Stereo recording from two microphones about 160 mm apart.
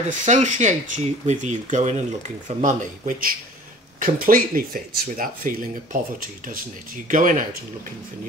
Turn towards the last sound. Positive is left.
turn(degrees=-55)  # may be behind; listen again after turning